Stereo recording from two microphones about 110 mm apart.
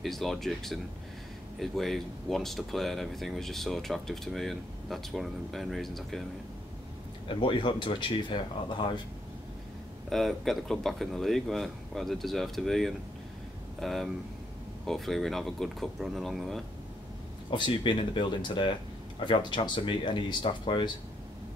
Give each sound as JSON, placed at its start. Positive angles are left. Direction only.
{"t": 0.0, "sound": "speech", "side_deg": 0}
{"t": 7.2, "sound": "speech", "side_deg": 45}
{"t": 10.0, "sound": "speech", "side_deg": 0}
{"t": 17.5, "sound": "speech", "side_deg": 45}